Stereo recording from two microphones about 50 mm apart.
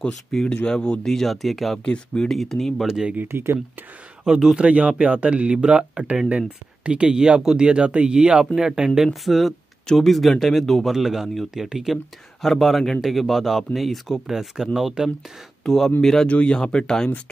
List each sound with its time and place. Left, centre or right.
0.3 s speech: centre
2.9 s speech: centre
3.3 s speech: right
4.3 s speech: centre
4.6 s speech: right
9.2 s speech: centre
15.6 s speech: centre
16.3 s speech: left
16.5 s speech: centre